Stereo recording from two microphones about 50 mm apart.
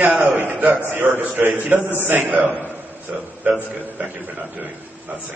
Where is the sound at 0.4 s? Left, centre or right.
Right.